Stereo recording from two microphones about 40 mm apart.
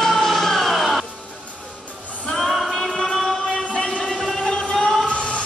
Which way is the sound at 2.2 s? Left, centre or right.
Centre.